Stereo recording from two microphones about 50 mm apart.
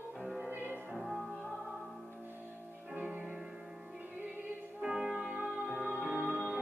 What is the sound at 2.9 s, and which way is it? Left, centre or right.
Music, right.